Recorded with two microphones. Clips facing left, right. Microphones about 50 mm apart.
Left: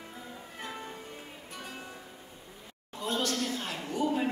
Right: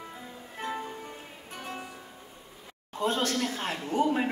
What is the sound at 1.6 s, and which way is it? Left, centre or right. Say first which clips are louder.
Music: right 5 dB; right.